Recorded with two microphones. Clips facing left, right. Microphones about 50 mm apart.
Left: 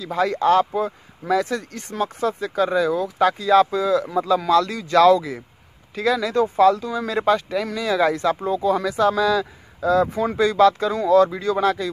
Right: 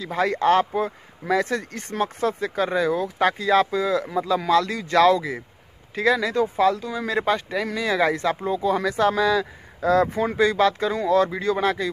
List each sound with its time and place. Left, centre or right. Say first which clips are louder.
0.0 s speech: left 1 dB; right
4.0 s speech: left 3 dB; centre
4.4 s speech: left 2 dB; centre
9.8 s speech: left 1 dB; right
10.2 s speech: left 3 dB; centre